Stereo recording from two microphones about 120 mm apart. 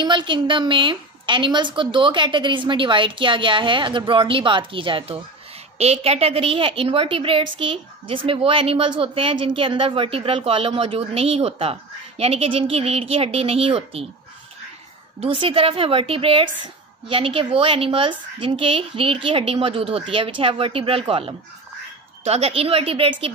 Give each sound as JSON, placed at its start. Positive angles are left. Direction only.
{"t": 0.0, "sound": "a woman's voice", "side_deg": -40}
{"t": 15.1, "sound": "a woman's voice", "side_deg": -50}
{"t": 22.2, "sound": "a woman's voice", "side_deg": -60}